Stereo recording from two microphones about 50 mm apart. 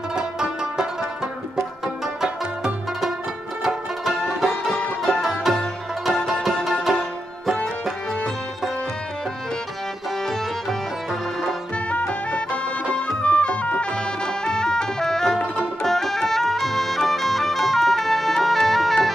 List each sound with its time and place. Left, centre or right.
0.1 s music: centre
2.2 s music: centre
4.4 s music: centre
6.1 s music: centre
12.1 s music: left
14.2 s music: centre